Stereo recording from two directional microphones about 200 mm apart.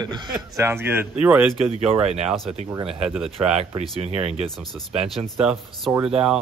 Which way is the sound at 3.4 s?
35° right (ahead or behind).